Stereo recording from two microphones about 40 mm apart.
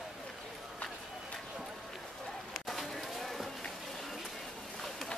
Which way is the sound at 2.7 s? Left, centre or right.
Centre.